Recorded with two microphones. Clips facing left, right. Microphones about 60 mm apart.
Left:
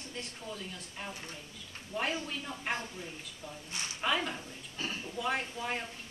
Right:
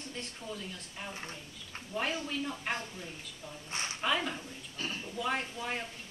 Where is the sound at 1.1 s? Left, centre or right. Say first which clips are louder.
Right 2 dB; right.